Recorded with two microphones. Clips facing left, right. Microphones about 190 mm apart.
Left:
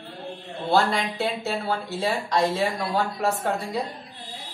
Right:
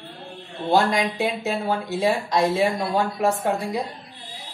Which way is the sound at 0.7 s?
15° right (ahead or behind).